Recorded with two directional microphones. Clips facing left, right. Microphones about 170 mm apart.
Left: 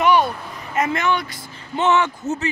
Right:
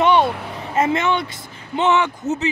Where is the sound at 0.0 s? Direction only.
25° right (ahead or behind).